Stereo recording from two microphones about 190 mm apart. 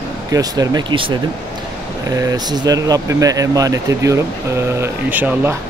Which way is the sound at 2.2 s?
20° right (ahead or behind).